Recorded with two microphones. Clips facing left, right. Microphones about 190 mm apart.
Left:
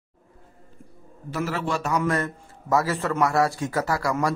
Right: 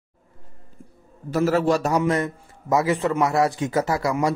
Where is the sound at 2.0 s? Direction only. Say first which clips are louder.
Right 3 dB; 20° right (ahead or behind).